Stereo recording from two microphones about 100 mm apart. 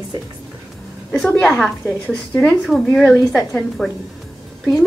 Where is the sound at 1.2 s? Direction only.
5° left (ahead or behind).